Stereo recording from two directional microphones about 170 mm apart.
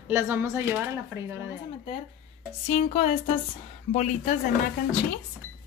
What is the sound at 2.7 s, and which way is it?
Speech, 40° left (ahead or behind).